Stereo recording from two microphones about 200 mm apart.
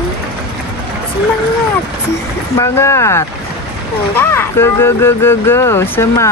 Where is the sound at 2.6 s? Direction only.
15° left (ahead or behind).